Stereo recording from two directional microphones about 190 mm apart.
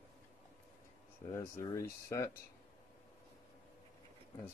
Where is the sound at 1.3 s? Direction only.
15° left (ahead or behind).